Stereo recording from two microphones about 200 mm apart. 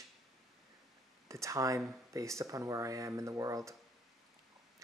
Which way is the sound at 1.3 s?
15° right (ahead or behind).